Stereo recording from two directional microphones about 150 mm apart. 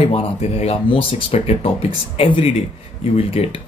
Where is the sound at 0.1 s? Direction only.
45° left (ahead or behind).